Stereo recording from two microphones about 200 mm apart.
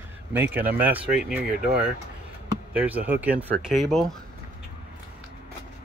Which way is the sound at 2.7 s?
10° right (ahead or behind).